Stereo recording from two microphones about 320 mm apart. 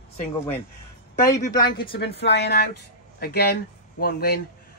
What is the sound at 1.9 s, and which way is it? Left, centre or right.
A woman's voice, left.